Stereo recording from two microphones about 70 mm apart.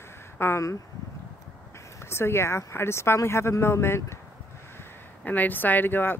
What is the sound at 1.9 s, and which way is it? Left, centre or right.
Speech, left.